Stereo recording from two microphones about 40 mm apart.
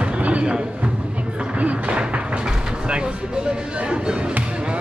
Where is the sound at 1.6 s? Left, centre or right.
Right.